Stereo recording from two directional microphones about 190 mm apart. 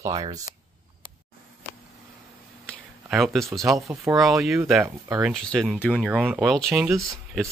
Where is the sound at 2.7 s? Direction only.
Centre (ahead or behind).